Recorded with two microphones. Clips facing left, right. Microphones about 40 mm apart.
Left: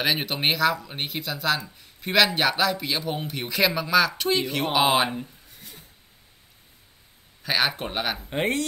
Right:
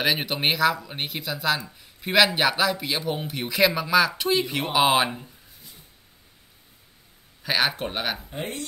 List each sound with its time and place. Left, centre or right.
0.0 s a man's voice: centre
7.4 s a man's voice: centre
8.3 s speech: left